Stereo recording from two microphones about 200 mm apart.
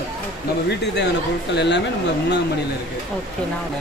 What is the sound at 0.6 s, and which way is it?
Speech, 60° left (ahead or behind).